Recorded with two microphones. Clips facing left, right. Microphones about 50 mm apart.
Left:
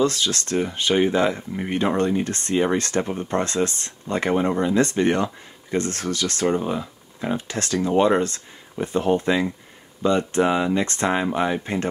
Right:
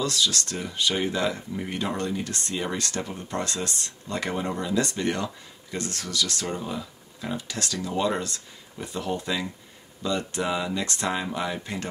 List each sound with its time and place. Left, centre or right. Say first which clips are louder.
0.0 s speech: left 5 dB; left